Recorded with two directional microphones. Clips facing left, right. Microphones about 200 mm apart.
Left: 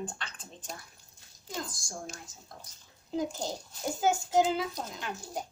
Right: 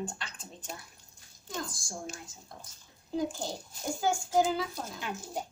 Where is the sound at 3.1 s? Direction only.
20° left (ahead or behind).